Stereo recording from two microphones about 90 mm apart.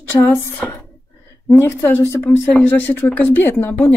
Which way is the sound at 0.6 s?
5° left (ahead or behind).